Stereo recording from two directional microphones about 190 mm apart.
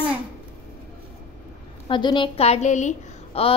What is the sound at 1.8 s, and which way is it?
A woman's voice, 25° left (ahead or behind).